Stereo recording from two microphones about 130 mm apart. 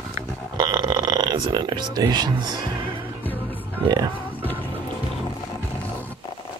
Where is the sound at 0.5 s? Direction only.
35° right (ahead or behind).